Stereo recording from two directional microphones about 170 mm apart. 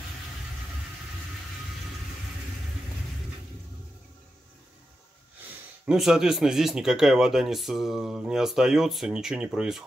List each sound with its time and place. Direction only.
5.9 s speech: centre (ahead or behind)